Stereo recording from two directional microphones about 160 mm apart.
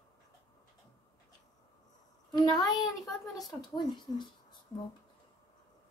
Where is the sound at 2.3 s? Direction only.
25° left (ahead or behind).